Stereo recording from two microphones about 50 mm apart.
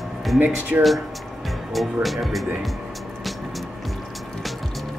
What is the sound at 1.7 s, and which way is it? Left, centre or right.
Speech, centre.